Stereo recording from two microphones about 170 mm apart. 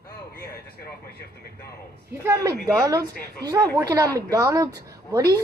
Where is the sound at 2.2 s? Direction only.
20° right (ahead or behind).